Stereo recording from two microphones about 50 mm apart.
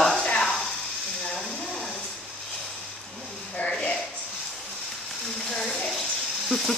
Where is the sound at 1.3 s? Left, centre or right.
Centre.